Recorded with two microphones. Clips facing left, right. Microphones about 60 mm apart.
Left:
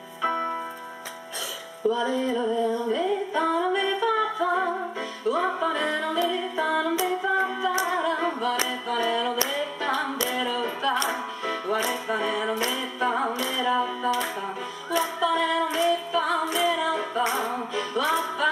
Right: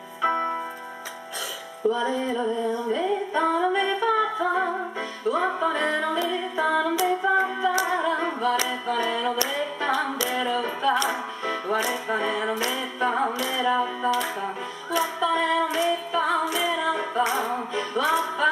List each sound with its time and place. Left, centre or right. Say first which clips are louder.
0.2 s music: right 2 dB; centre
1.9 s music: even; centre
2.9 s singing: even; centre
3.4 s music: right 2 dB; centre
7.8 s singing: right 1 dB; centre
8.6 s music: right 1 dB; centre